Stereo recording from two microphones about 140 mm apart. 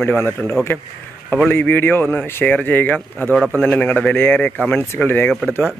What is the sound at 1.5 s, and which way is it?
Speech, 15° left (ahead or behind).